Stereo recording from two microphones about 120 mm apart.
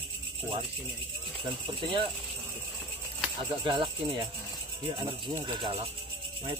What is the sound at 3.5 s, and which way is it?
Speech, 45° right (ahead or behind).